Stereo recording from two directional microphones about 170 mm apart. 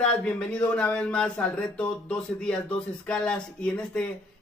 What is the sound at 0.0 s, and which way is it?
Speech, 5° left (ahead or behind).